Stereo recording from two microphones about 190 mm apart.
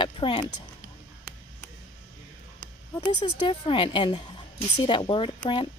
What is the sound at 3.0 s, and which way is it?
Speech, 25° left (ahead or behind).